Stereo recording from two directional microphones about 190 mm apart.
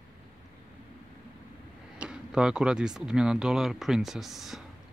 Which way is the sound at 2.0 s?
5° right (ahead or behind).